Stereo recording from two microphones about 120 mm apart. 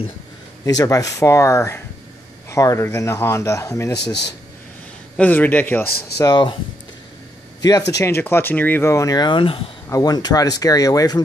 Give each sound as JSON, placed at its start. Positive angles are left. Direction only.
{"t": 0.7, "sound": "speech", "side_deg": 30}
{"t": 5.1, "sound": "speech", "side_deg": 15}
{"t": 6.2, "sound": "speech", "side_deg": 40}
{"t": 7.6, "sound": "speech", "side_deg": 25}
{"t": 9.8, "sound": "speech", "side_deg": 30}